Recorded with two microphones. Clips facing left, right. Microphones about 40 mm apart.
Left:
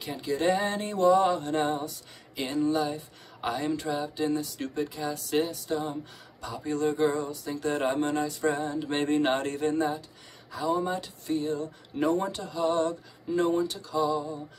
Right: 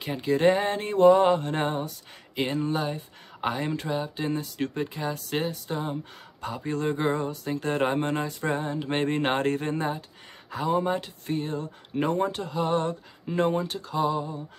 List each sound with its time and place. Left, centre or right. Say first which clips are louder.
0.0 s speech: right 5 dB; right